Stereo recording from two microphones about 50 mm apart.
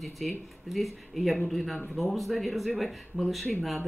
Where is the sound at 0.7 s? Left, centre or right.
Centre.